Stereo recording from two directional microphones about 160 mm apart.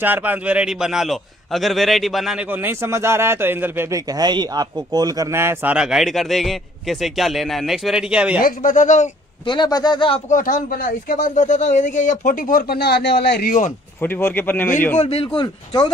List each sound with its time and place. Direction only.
0.0 s a man's voice: 10° right (ahead or behind)
8.4 s speech: 60° left (ahead or behind)
9.5 s speech: 25° left (ahead or behind)
10.3 s speech: 60° left (ahead or behind); by 13.6 s 80° left
14.0 s a man's voice: 10° left (ahead or behind)
15.0 s speech: 35° left (ahead or behind)